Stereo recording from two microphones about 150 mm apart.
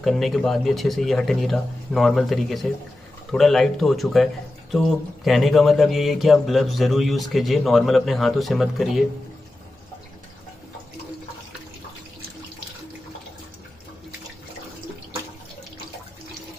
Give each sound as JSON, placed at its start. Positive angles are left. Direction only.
{"t": 0.0, "sound": "speech", "side_deg": 0}